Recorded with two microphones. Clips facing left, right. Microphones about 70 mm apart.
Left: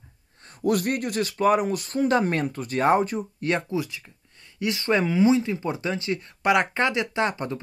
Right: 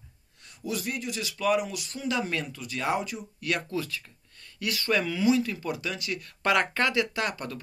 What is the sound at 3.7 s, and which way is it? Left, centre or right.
Speech, centre.